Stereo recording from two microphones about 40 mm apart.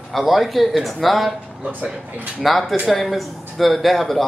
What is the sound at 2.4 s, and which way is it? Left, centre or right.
Speech, centre.